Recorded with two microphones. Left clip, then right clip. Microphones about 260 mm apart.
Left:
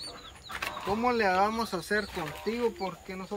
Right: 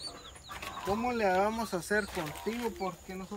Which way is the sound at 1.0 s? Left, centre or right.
Centre.